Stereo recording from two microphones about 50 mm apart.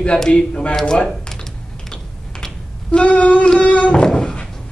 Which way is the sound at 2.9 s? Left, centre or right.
Left.